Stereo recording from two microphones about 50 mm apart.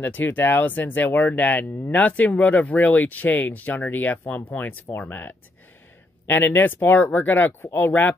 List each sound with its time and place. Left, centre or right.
0.0 s speech: left
6.2 s speech: left